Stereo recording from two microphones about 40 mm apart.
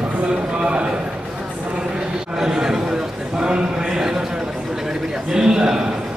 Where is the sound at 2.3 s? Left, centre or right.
Centre.